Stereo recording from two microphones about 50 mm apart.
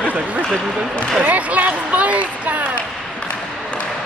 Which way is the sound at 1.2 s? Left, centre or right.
Right.